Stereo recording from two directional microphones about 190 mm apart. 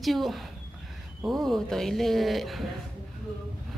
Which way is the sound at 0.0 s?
Centre (ahead or behind).